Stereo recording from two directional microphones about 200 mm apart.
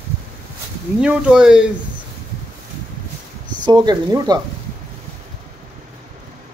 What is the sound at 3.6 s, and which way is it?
Speech, 20° right (ahead or behind).